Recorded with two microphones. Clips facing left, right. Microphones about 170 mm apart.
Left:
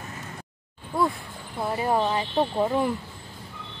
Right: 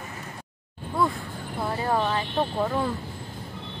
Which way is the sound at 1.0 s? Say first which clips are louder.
Even; 10° left (ahead or behind).